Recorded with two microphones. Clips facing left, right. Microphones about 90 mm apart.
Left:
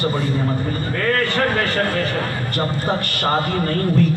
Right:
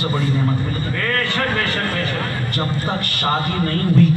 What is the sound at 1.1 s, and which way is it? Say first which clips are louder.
Speech: left 2 dB; 40° left (ahead or behind).